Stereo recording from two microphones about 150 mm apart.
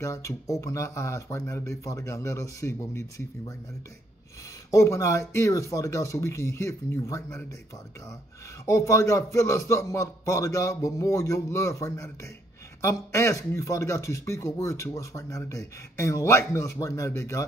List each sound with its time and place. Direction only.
0.0 s a man's voice: 20° left (ahead or behind)
4.6 s a man's voice: 20° left (ahead or behind)
8.6 s a man's voice: 20° left (ahead or behind)